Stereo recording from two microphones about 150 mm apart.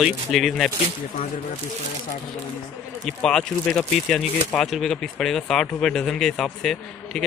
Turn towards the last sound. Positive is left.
turn(degrees=5)  # may be behind; listen again after turning